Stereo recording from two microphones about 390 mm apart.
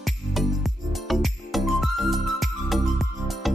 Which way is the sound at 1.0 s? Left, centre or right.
Centre.